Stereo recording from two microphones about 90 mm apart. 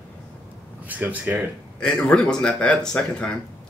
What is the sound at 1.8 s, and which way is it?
Speech, 10° left (ahead or behind).